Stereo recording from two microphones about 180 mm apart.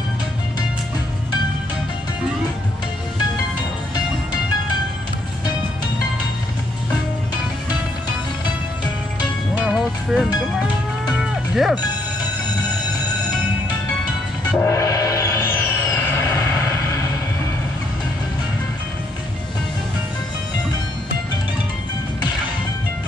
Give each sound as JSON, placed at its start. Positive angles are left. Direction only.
{"t": 9.6, "sound": "music", "side_deg": -5}
{"t": 11.1, "sound": "cattle", "side_deg": -5}
{"t": 14.6, "sound": "music", "side_deg": 15}